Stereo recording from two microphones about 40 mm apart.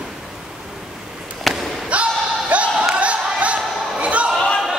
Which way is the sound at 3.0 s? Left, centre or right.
Right.